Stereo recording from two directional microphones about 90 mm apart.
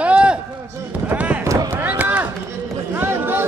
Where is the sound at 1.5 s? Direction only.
35° right (ahead or behind).